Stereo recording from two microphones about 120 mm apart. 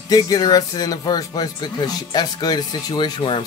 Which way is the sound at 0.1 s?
30° left (ahead or behind).